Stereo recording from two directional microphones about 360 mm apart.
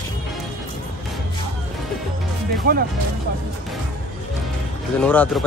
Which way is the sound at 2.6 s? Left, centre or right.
Right.